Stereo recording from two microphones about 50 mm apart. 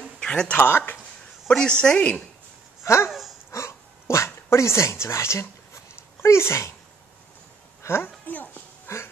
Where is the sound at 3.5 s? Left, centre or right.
Left.